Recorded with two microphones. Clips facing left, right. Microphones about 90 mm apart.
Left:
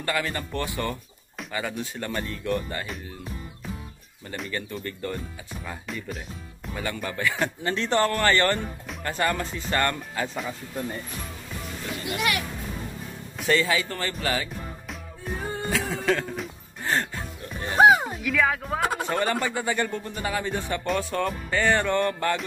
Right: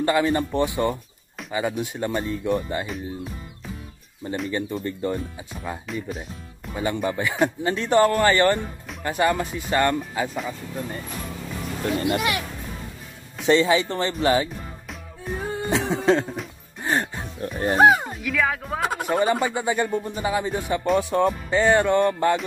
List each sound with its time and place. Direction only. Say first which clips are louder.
0.0 s speech: right 8 dB; 20° right (ahead or behind)
4.5 s speech: right 4 dB; 20° right (ahead or behind)
5.9 s speech: right 4 dB; centre (ahead or behind)
6.7 s speech: right 6 dB; 20° right (ahead or behind)
12.0 s speech: right 1 dB; 25° right (ahead or behind)
13.5 s speech: right 5 dB; 25° right (ahead or behind)
15.3 s music: right 3 dB; centre (ahead or behind)
15.7 s a sound: right 6 dB; 20° right (ahead or behind)
16.8 s music: right 2 dB; 15° right (ahead or behind)
17.4 s music: right 10 dB; 40° right (ahead or behind)
17.7 s speech: even; centre (ahead or behind); by 22.4 s 15° right (ahead or behind)